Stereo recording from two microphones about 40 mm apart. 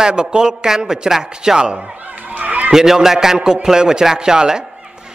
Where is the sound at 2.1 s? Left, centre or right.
Right.